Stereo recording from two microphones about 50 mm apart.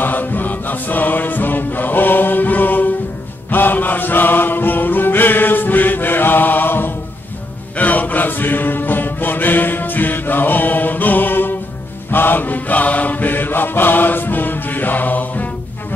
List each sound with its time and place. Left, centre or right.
0.0 s music: left
3.4 s mantra: left